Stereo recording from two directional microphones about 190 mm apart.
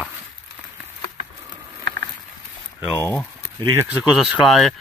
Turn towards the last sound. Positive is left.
turn(degrees=0)  # may be behind; listen again after turning